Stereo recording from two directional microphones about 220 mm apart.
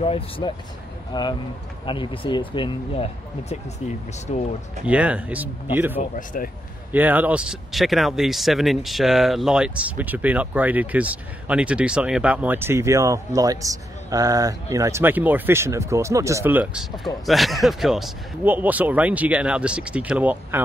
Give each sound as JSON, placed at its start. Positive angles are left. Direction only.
{"t": 0.0, "sound": "speech", "side_deg": 25}
{"t": 4.8, "sound": "speech", "side_deg": -5}
{"t": 5.9, "sound": "speech", "side_deg": 35}
{"t": 6.9, "sound": "speech", "side_deg": -10}